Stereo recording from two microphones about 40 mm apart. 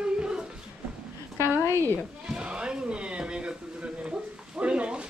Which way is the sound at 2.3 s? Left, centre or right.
Right.